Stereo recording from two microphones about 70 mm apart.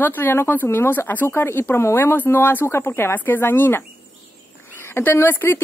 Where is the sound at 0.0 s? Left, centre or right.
Left.